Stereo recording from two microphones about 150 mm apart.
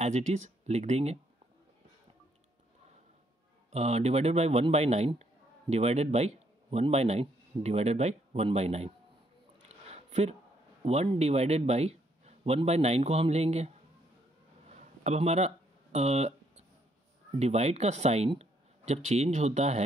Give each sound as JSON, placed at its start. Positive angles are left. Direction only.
{"t": 0.0, "sound": "a man's voice", "side_deg": -50}
{"t": 3.7, "sound": "speech", "side_deg": -45}
{"t": 9.9, "sound": "a sound", "side_deg": -45}
{"t": 10.8, "sound": "a man's voice", "side_deg": -45}
{"t": 14.8, "sound": "a sound", "side_deg": -45}
{"t": 17.4, "sound": "a man's voice", "side_deg": -45}